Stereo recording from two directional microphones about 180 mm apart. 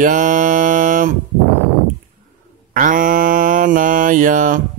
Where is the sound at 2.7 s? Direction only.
45° right (ahead or behind).